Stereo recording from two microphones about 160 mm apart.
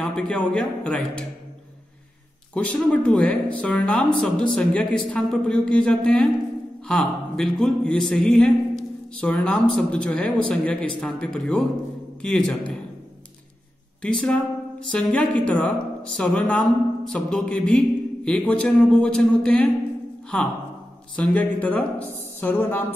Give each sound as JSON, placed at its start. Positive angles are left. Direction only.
{"t": 0.0, "sound": "speech", "side_deg": 5}
{"t": 2.5, "sound": "speech", "side_deg": 10}
{"t": 14.0, "sound": "speech", "side_deg": 5}
{"t": 21.2, "sound": "speech", "side_deg": 10}